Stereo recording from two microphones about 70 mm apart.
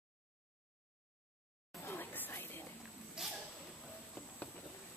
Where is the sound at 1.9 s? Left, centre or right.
Left.